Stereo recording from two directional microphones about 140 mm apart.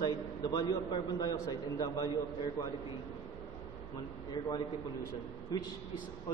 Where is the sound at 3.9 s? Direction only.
30° left (ahead or behind).